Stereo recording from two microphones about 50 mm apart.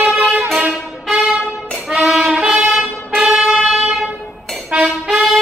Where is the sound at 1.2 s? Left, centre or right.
Centre.